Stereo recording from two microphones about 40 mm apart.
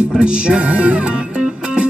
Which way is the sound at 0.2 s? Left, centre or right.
Right.